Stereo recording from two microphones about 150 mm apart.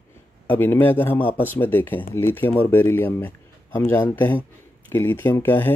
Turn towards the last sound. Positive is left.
turn(degrees=15)  # may be behind; listen again after turning